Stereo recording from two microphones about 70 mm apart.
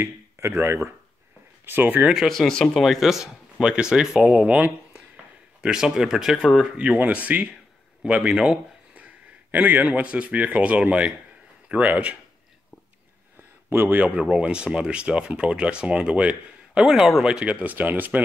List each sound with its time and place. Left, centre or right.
0.0 s speech: right
1.7 s a man's voice: right
2.1 s speech: centre
7.3 s a man's voice: right
8.0 s speech: centre
9.5 s a man's voice: right
13.7 s a man's voice: right